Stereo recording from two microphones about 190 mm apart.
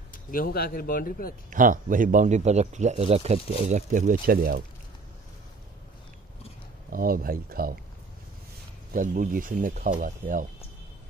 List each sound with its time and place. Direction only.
0.1 s speech: 50° left (ahead or behind)
1.5 s speech: 45° right (ahead or behind)
6.9 s speech: 50° right (ahead or behind)
8.9 s speech: 45° right (ahead or behind)